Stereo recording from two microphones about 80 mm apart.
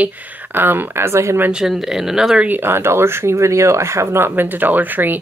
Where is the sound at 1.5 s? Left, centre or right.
Centre.